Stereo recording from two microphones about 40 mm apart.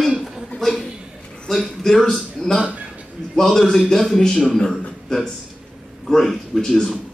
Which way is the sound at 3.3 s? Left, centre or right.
Centre.